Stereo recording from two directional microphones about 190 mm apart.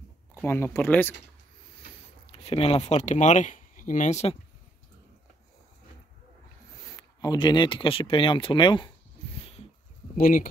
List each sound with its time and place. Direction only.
0.3 s speech: 10° left (ahead or behind)
2.3 s speech: 30° left (ahead or behind)
7.0 s speech: 20° left (ahead or behind)
9.4 s a sound: 30° left (ahead or behind)
10.1 s speech: 45° left (ahead or behind)